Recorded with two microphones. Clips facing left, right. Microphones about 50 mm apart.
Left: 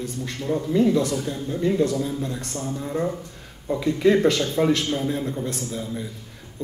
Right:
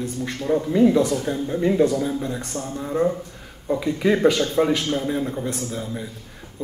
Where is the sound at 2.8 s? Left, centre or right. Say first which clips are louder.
Right 6 dB; centre.